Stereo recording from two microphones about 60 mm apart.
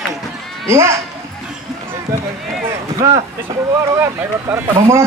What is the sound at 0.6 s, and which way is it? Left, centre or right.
Speech, right.